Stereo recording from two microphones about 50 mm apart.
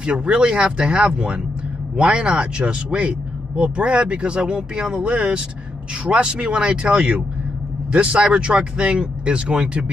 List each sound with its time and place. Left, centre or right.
0.0 s speech: right